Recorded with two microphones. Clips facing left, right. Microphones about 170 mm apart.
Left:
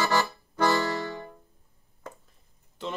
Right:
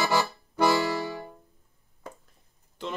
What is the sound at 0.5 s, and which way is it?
Music, 15° right (ahead or behind).